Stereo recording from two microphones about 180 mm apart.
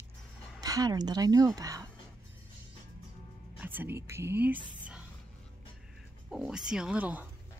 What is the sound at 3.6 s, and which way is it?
Speech, 10° right (ahead or behind).